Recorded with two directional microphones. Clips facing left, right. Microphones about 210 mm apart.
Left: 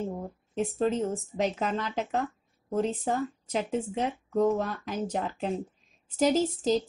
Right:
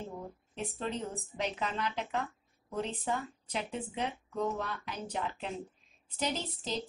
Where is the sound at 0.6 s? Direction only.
45° left (ahead or behind).